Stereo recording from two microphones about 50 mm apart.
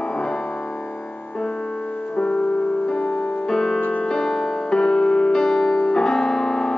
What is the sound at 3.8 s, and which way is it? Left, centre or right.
Music, left.